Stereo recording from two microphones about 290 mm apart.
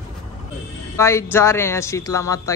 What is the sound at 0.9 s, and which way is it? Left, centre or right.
Speech, centre.